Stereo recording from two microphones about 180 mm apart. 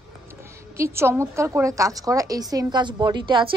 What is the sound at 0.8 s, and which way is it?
A woman's voice, 15° right (ahead or behind).